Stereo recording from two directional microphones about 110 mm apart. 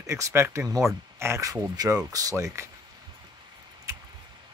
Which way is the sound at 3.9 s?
25° right (ahead or behind).